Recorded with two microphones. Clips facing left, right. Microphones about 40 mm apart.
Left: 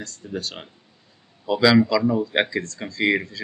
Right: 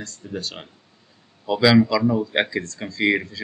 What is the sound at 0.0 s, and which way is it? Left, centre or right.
Speech, centre.